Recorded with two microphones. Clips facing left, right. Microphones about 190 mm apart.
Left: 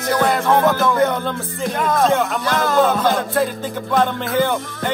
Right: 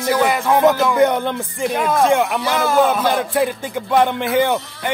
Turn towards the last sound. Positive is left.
turn(degrees=-15)  # may be behind; listen again after turning